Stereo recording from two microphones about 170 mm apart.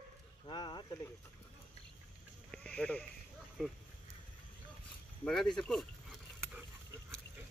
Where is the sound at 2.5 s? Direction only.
5° left (ahead or behind).